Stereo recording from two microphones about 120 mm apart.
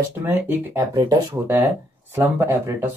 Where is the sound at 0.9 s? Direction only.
35° right (ahead or behind).